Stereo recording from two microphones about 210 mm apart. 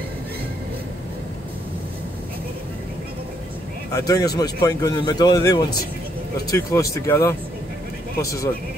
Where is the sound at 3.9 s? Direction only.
15° left (ahead or behind).